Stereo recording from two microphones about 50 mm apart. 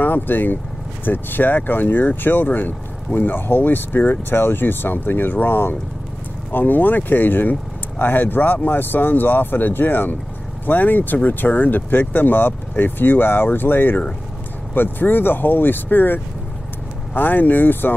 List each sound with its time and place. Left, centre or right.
0.0 s speech: left